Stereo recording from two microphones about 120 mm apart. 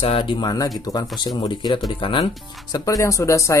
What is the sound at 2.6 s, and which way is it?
Speech, 30° left (ahead or behind).